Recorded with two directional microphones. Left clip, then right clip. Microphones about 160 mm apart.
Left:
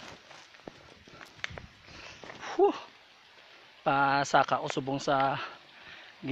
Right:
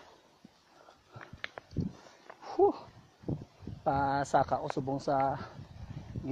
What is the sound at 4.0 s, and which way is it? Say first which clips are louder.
Speech: left 4 dB; 5° right (ahead or behind).